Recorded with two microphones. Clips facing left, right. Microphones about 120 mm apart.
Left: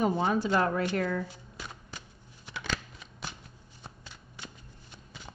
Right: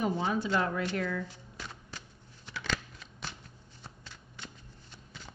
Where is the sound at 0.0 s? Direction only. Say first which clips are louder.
Left 4 dB; 45° left (ahead or behind).